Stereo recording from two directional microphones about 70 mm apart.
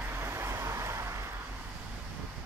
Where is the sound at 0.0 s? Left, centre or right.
Right.